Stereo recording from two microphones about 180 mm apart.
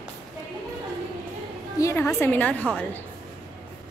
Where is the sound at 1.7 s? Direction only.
15° left (ahead or behind).